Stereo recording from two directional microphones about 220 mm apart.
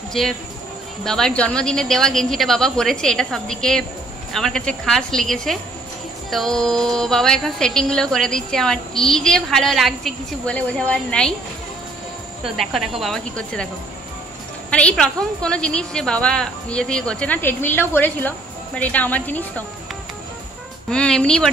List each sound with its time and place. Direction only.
0.2 s a woman's voice: centre (ahead or behind)
12.4 s a woman's voice: centre (ahead or behind)
14.7 s a woman's voice: 5° left (ahead or behind)
20.9 s a woman's voice: 5° left (ahead or behind)